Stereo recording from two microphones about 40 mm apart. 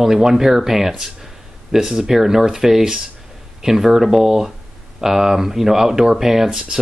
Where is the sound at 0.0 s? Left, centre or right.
Centre.